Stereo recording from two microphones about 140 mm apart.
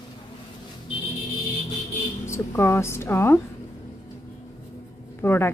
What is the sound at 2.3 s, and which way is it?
Speech, 20° left (ahead or behind).